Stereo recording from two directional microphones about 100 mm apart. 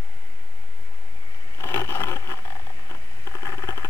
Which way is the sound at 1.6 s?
25° left (ahead or behind).